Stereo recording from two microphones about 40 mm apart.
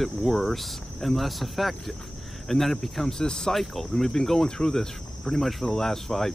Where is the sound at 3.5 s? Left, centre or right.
Centre.